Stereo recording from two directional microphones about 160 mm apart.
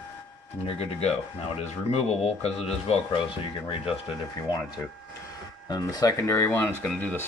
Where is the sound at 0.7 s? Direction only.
40° left (ahead or behind).